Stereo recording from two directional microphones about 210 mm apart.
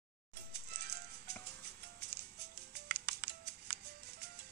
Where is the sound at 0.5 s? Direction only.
50° right (ahead or behind).